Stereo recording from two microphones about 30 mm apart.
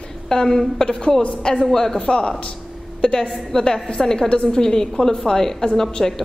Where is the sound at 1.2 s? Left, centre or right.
Left.